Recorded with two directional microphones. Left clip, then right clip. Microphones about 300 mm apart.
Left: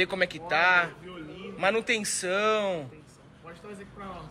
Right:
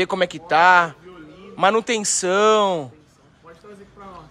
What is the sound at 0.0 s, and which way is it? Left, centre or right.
Speech, right.